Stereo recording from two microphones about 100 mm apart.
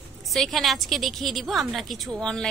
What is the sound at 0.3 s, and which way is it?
A woman's voice, centre (ahead or behind).